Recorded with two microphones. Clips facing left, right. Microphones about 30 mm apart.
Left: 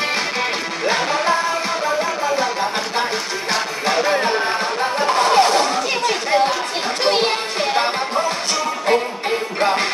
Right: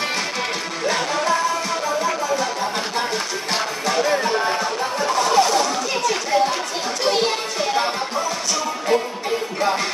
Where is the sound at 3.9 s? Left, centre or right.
Left.